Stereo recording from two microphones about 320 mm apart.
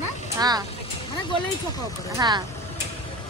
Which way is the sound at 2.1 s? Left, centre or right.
Centre.